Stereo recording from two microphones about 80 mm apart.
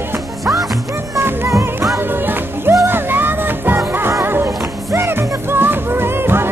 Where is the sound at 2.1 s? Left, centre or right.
Right.